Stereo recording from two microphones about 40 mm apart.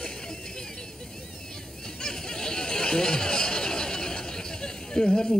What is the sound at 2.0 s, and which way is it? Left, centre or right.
Chatter, centre.